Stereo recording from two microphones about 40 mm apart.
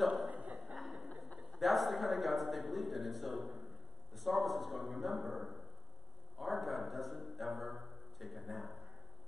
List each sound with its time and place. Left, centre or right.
0.3 s chuckle: right
0.6 s chuckle: centre
1.5 s a man's voice: centre